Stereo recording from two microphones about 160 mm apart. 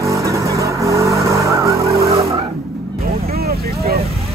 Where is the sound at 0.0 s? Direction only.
20° right (ahead or behind).